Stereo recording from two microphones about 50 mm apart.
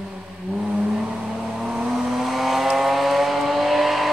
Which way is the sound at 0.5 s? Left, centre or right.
Right.